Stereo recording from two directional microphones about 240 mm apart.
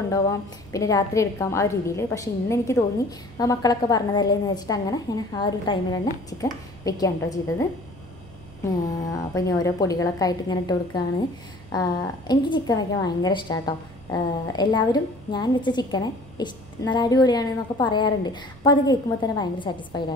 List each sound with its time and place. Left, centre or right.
0.1 s a woman's voice: centre
8.6 s a woman's voice: centre